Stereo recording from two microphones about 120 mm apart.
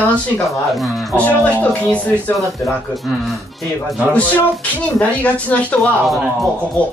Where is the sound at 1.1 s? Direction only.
10° left (ahead or behind).